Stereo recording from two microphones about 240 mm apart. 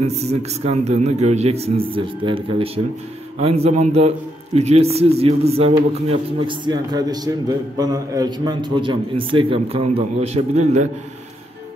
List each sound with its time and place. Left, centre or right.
0.0 s a man's voice: right